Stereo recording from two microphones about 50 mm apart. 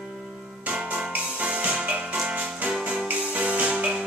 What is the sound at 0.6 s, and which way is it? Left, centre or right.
Music, right.